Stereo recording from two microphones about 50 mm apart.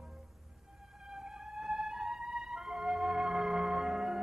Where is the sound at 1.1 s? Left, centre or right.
Centre.